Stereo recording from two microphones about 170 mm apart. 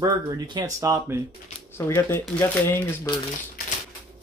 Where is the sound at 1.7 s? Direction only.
15° left (ahead or behind).